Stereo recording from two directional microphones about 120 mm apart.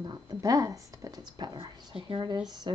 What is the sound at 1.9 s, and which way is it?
Speech, 45° right (ahead or behind).